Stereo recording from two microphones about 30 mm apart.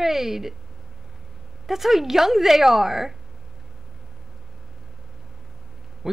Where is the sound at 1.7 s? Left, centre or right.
Centre.